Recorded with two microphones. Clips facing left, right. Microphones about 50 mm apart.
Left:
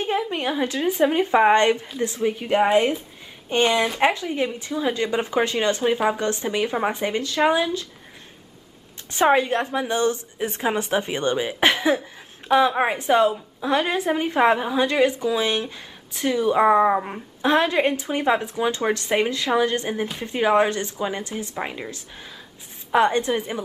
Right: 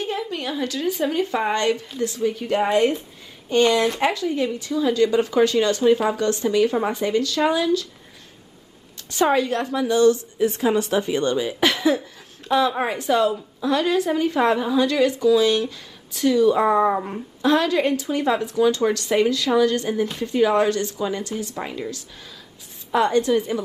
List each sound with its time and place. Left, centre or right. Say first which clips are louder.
0.0 s a woman's voice: left 3 dB; left
9.1 s a woman's voice: left 1 dB; left